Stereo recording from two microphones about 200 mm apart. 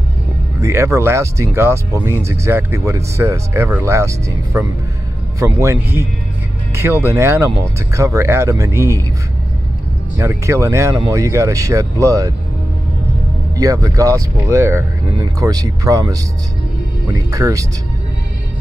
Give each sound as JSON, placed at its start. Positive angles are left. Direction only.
{"t": 0.6, "sound": "speech", "side_deg": -15}
{"t": 10.1, "sound": "speech", "side_deg": -15}
{"t": 13.6, "sound": "speech", "side_deg": -15}